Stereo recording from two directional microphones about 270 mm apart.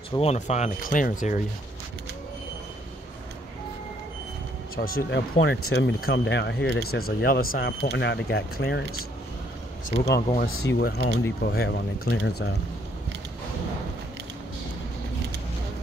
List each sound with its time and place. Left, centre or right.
0.2 s speech: left
4.7 s speech: left
10.5 s speech: left
10.8 s speech: left